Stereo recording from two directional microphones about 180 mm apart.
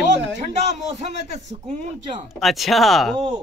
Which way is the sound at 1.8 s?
45° right (ahead or behind).